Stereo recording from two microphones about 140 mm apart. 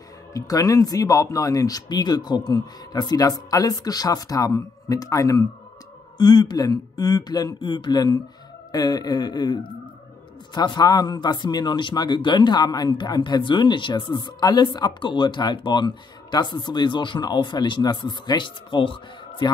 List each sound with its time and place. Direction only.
0.3 s speech: 25° left (ahead or behind)